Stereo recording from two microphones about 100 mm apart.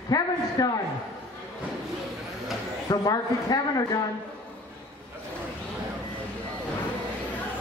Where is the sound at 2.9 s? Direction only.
40° left (ahead or behind).